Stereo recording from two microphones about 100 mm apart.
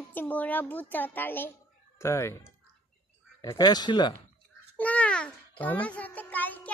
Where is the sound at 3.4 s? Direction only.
40° left (ahead or behind).